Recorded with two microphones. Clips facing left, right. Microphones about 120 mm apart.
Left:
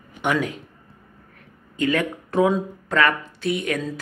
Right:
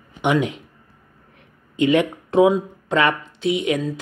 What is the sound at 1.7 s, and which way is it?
Speech, 20° right (ahead or behind).